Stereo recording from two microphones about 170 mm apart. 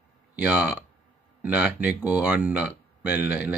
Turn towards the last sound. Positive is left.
turn(degrees=-10)  # may be behind; listen again after turning